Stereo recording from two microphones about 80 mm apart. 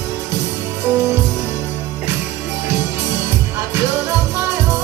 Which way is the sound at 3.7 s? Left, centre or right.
Right.